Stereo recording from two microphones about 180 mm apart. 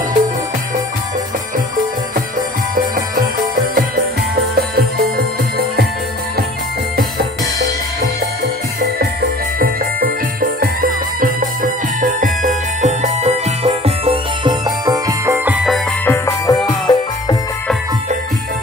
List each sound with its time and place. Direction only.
4.6 s music: 60° right (ahead or behind)
9.6 s music: 55° right (ahead or behind); by 15.8 s 5° right (ahead or behind)
16.1 s music: 15° left (ahead or behind)